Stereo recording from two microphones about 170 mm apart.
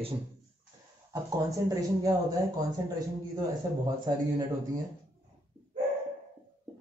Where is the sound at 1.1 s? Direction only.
20° right (ahead or behind).